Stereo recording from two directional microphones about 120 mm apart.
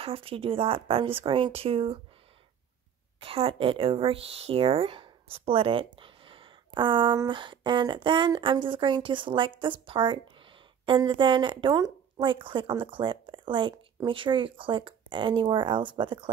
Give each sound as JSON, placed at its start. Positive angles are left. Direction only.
{"t": 0.0, "sound": "speech", "side_deg": -50}
{"t": 3.2, "sound": "speech", "side_deg": -50}
{"t": 5.9, "sound": "a sound", "side_deg": -45}
{"t": 7.2, "sound": "a woman's voice", "side_deg": -40}